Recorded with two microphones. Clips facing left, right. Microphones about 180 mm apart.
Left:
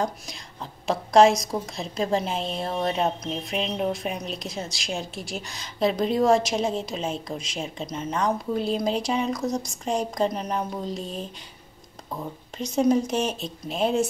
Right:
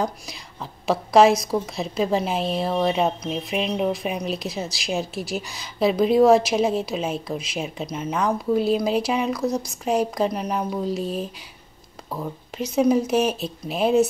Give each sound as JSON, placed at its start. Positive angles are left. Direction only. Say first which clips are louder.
{"t": 0.8, "sound": "a woman's voice", "louder": "right 2 dB", "side_deg": -5}
{"t": 12.5, "sound": "a woman's voice", "louder": "right 2 dB", "side_deg": -5}